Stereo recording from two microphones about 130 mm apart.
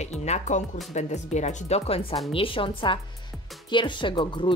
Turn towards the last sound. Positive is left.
turn(degrees=40)  # may be behind; listen again after turning